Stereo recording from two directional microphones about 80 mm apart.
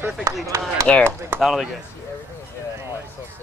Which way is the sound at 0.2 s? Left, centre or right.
Right.